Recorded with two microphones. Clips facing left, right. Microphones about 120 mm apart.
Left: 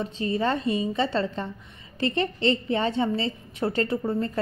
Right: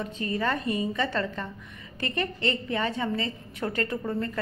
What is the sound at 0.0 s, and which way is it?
A woman's voice, 25° left (ahead or behind).